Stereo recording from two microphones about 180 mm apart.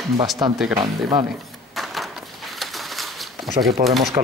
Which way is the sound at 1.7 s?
Centre (ahead or behind).